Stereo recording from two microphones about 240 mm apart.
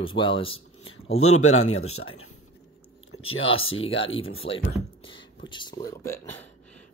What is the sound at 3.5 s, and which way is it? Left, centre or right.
Speech, left.